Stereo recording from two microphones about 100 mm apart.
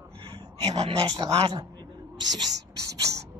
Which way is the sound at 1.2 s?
35° right (ahead or behind).